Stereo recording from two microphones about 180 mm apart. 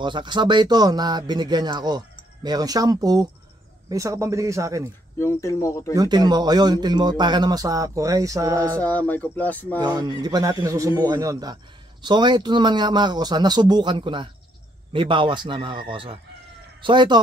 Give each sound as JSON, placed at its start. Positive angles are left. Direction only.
{"t": 0.0, "sound": "speech", "side_deg": -25}
{"t": 5.2, "sound": "speech", "side_deg": 15}
{"t": 5.9, "sound": "speech", "side_deg": -25}
{"t": 8.7, "sound": "speech", "side_deg": 10}
{"t": 9.8, "sound": "speech", "side_deg": -25}